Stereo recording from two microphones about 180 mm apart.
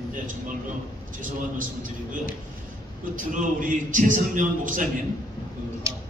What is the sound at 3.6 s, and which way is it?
A man's voice, 45° right (ahead or behind).